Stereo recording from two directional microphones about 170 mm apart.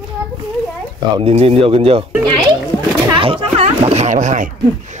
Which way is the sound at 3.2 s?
35° right (ahead or behind).